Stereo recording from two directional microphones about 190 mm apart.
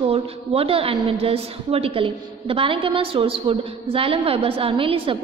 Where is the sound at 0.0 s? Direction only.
30° right (ahead or behind).